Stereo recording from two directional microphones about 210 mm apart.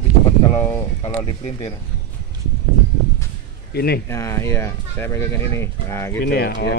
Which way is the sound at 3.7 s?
50° left (ahead or behind).